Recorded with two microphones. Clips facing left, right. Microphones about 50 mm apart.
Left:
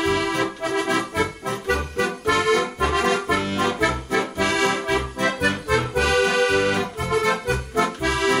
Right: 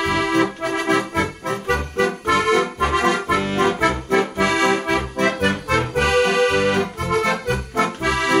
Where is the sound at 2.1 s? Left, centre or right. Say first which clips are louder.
Even; right.